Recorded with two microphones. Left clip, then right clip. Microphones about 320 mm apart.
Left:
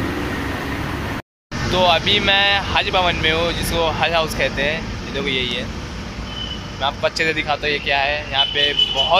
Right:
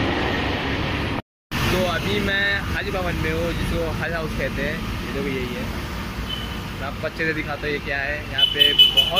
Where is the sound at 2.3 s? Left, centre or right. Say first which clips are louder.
Left 6 dB; left.